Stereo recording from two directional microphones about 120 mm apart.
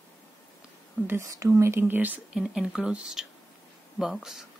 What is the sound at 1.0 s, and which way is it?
Speech, 25° right (ahead or behind).